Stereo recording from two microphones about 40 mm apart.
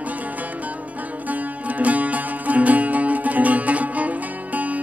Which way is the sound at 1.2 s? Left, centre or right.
Right.